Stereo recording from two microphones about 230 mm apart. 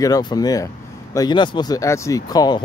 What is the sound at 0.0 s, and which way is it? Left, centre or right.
Speech, centre.